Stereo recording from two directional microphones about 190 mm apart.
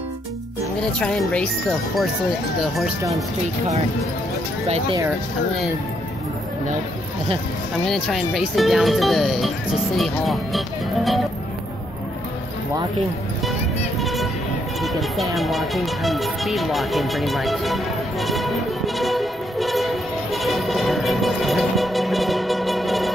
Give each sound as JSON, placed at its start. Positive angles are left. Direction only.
{"t": 0.9, "sound": "speech", "side_deg": 5}
{"t": 4.6, "sound": "speech", "side_deg": -35}
{"t": 7.8, "sound": "speech", "side_deg": 0}
{"t": 13.5, "sound": "music", "side_deg": 0}